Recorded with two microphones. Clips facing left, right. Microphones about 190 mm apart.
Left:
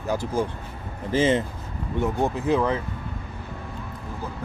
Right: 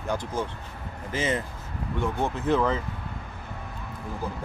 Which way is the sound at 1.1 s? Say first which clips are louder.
Left 7 dB; 30° left (ahead or behind).